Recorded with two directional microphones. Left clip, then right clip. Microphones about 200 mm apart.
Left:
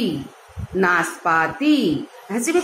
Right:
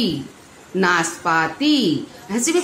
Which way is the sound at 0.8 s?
40° right (ahead or behind).